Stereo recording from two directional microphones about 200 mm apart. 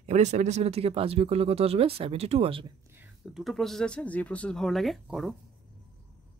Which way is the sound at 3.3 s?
Centre (ahead or behind).